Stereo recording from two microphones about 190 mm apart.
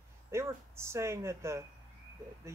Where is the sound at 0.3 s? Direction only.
15° right (ahead or behind).